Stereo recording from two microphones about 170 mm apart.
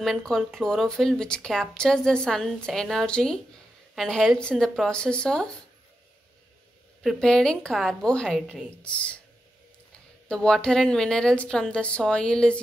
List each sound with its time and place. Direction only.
0.0 s speech: centre (ahead or behind)
7.0 s speech: 5° left (ahead or behind)
10.2 s speech: 5° left (ahead or behind)